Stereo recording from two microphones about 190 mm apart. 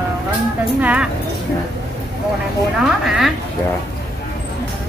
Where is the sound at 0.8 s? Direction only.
5° right (ahead or behind).